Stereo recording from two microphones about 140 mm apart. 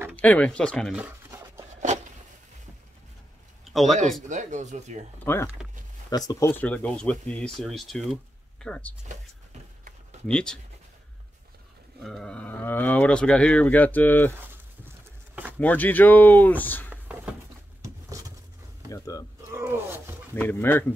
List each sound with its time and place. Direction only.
0.1 s speech: 10° left (ahead or behind)
0.9 s a sound: 10° right (ahead or behind)
1.8 s a sound: 60° right (ahead or behind)
3.7 s speech: centre (ahead or behind)
4.3 s speech: 60° right (ahead or behind)
5.2 s speech: 15° left (ahead or behind)
6.5 s speech: 10° left (ahead or behind)
10.2 s speech: 5° left (ahead or behind)
12.0 s speech: 5° left (ahead or behind)
15.6 s speech: 10° left (ahead or behind)
18.9 s speech: 25° left (ahead or behind)
19.5 s a sound: 15° right (ahead or behind)
20.3 s speech: 15° left (ahead or behind)